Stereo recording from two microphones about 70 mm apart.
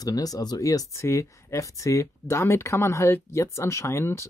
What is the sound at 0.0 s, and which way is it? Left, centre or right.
Speech, left.